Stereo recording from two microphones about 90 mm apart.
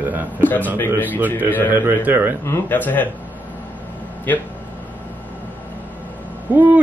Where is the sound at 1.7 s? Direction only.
20° right (ahead or behind).